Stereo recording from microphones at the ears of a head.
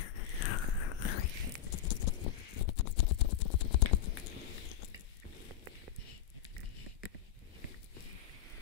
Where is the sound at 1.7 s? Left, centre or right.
Left.